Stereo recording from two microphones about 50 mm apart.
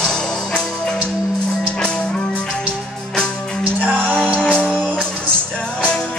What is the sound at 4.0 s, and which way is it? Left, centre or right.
Music, centre.